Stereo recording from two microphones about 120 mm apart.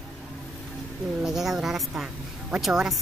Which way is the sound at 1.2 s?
5° right (ahead or behind).